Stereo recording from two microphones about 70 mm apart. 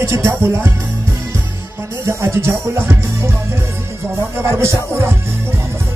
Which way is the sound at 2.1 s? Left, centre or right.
Right.